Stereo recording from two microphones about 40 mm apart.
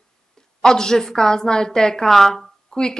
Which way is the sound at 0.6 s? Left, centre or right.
Centre.